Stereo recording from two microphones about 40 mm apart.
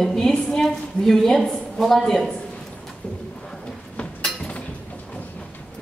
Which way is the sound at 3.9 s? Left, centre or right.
Left.